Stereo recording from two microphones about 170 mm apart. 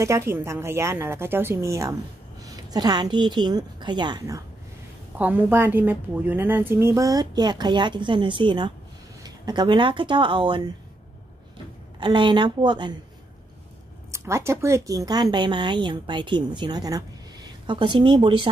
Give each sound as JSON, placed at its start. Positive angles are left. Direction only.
{"t": 0.0, "sound": "a woman's voice", "side_deg": -15}
{"t": 5.2, "sound": "a woman's voice", "side_deg": -10}
{"t": 12.0, "sound": "a woman's voice", "side_deg": -25}
{"t": 14.1, "sound": "a woman's voice", "side_deg": -15}